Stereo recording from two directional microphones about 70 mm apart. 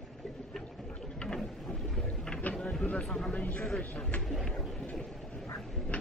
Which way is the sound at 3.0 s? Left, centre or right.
Centre.